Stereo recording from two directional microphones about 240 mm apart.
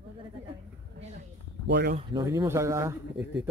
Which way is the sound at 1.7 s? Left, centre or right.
Right.